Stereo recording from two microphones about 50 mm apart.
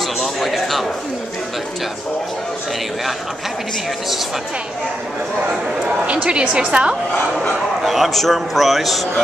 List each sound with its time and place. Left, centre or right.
0.2 s a man's voice: centre
6.0 s a woman's voice: right
7.8 s a man's voice: centre